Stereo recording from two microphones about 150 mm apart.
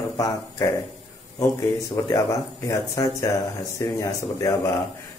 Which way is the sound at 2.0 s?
20° left (ahead or behind).